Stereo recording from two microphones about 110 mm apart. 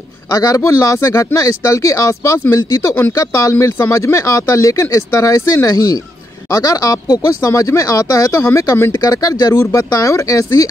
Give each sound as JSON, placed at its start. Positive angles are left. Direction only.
{"t": 0.3, "sound": "speech", "side_deg": 30}